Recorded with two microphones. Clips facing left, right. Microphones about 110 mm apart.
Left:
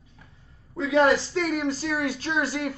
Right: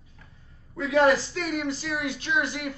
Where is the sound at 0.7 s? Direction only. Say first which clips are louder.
Even; 30° left (ahead or behind).